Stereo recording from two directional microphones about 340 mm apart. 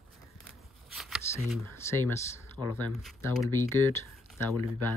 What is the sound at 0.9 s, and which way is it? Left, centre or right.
Speech, centre.